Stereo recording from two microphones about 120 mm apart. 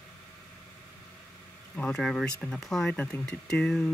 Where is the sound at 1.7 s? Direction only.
5° left (ahead or behind).